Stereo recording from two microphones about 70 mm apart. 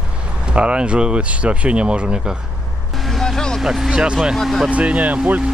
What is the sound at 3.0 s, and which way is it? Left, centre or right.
Vehicle, centre.